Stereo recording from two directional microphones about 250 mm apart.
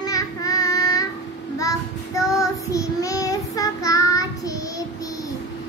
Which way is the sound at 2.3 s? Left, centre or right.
Centre.